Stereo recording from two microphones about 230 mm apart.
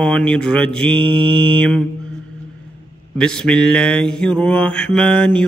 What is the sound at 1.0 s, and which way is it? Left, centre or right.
Mantra, right.